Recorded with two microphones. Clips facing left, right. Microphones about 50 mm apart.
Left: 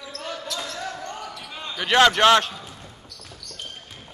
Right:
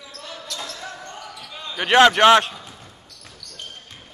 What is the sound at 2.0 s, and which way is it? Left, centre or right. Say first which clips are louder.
Speech: right 3 dB; centre.